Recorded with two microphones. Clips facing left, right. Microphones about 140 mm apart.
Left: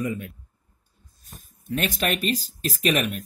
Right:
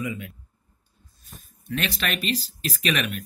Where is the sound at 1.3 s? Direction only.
45° left (ahead or behind).